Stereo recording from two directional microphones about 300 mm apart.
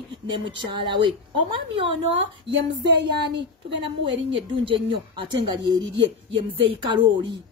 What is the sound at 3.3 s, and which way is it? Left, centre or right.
Speech, right.